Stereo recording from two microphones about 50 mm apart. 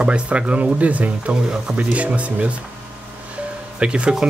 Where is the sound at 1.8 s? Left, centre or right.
Right.